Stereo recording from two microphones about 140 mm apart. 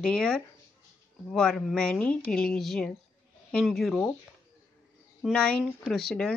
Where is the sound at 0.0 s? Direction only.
5° left (ahead or behind).